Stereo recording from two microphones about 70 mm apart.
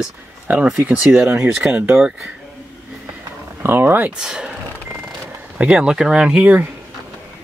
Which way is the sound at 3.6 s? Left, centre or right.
Right.